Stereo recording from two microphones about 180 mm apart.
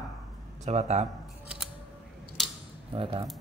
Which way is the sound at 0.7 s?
40° right (ahead or behind).